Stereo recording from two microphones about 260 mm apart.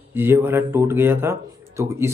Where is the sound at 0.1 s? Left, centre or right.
Centre.